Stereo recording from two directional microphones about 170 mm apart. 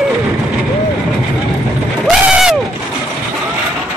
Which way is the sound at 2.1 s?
5° right (ahead or behind).